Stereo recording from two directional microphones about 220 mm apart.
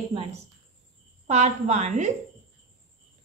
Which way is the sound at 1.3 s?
30° right (ahead or behind).